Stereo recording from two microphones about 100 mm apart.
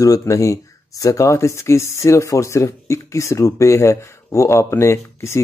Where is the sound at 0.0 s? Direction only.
35° left (ahead or behind).